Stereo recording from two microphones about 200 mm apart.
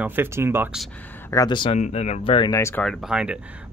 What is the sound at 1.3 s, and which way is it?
Speech, 20° left (ahead or behind).